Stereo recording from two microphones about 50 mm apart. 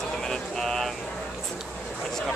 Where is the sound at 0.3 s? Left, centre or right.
Centre.